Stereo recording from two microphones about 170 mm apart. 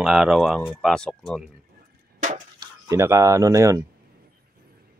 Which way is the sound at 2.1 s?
50° right (ahead or behind).